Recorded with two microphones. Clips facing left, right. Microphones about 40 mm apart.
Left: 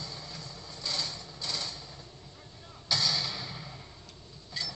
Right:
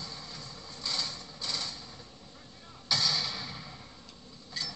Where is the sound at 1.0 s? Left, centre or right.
Centre.